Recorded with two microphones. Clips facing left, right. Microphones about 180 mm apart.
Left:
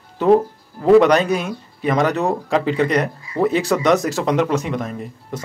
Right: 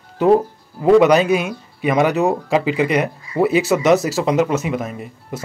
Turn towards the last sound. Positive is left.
turn(degrees=-5)  # may be behind; listen again after turning